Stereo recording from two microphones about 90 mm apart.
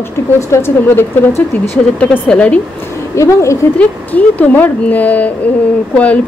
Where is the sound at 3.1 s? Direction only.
35° left (ahead or behind).